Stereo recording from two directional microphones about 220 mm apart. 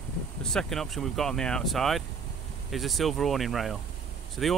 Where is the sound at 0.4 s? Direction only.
5° left (ahead or behind).